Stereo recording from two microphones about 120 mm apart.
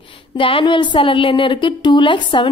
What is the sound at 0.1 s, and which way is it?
A woman's voice, 45° left (ahead or behind).